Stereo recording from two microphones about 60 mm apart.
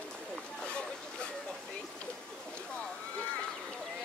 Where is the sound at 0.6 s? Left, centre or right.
Centre.